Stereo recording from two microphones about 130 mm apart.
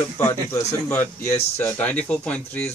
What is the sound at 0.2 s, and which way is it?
A man's voice, 20° left (ahead or behind).